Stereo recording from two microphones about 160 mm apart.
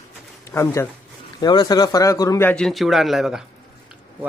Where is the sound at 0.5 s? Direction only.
20° left (ahead or behind).